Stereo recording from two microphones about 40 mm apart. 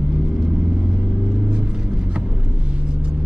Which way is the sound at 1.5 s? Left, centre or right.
Centre.